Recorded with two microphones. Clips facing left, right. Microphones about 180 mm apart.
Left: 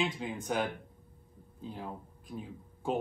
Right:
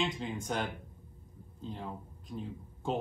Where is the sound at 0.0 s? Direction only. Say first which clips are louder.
Left 1 dB; 5° left (ahead or behind).